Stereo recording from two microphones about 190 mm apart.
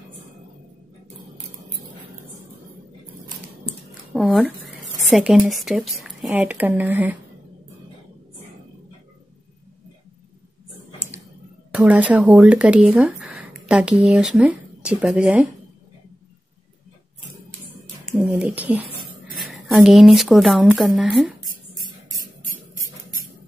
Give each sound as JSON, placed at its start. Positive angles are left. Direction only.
{"t": 4.1, "sound": "speech", "side_deg": -5}
{"t": 11.7, "sound": "speech", "side_deg": -5}
{"t": 18.1, "sound": "a sound", "side_deg": -5}
{"t": 19.3, "sound": "speech", "side_deg": 0}